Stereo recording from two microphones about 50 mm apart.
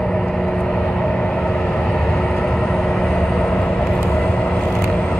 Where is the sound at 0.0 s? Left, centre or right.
Centre.